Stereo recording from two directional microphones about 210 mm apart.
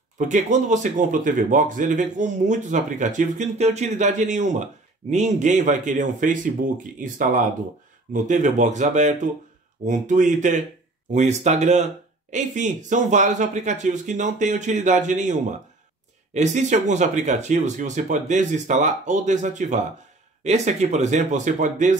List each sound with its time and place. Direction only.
0.2 s speech: 35° right (ahead or behind)
16.3 s speech: 35° right (ahead or behind)